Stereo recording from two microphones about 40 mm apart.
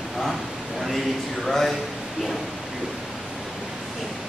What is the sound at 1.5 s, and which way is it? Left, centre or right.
Speech, centre.